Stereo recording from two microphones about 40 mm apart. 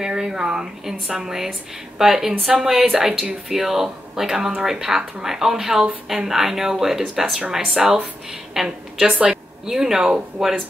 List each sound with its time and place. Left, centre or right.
0.0 s a woman's voice: centre